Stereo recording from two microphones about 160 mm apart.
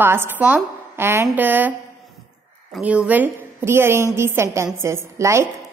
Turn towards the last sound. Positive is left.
turn(degrees=-15)  # may be behind; listen again after turning